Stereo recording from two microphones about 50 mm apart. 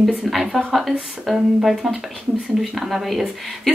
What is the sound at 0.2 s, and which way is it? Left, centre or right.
Speech, centre.